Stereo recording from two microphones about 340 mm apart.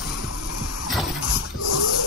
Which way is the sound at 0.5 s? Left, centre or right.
Left.